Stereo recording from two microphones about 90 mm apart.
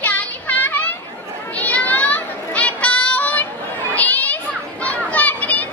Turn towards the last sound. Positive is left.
turn(degrees=20)  # may be behind; listen again after turning